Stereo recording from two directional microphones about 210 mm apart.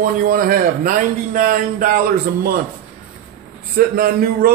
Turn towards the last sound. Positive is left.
turn(degrees=-45)  # may be behind; listen again after turning